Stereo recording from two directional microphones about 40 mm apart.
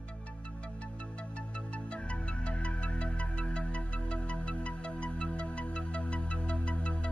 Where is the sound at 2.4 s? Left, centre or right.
Left.